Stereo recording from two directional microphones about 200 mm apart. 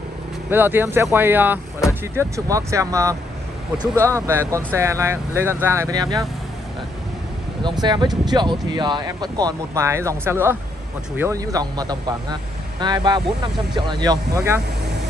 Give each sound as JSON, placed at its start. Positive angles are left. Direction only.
{"t": 0.5, "sound": "speech", "side_deg": -10}
{"t": 7.8, "sound": "speech", "side_deg": -20}